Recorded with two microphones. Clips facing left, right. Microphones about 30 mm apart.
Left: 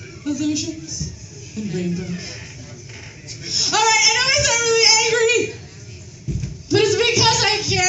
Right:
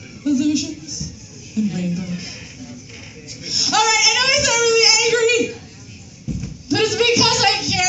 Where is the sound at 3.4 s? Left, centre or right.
Right.